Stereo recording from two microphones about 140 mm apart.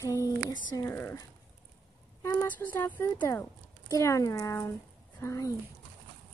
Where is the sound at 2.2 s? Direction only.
15° left (ahead or behind).